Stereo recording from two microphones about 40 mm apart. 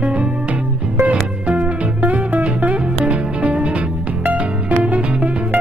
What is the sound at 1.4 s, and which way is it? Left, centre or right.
Music, right.